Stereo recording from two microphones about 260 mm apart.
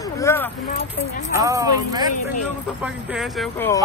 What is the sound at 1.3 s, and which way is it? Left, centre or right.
Speech, centre.